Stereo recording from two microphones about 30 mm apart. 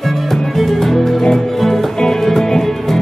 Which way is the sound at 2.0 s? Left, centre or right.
Left.